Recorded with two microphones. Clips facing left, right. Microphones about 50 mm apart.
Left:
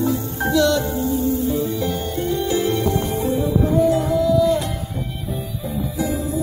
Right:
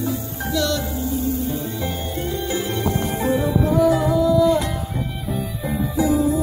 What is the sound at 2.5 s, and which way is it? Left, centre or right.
Music, centre.